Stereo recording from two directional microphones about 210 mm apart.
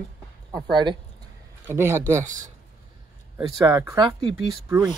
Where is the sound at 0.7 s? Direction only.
20° right (ahead or behind).